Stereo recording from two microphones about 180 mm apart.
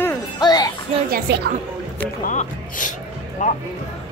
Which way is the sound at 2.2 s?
45° left (ahead or behind).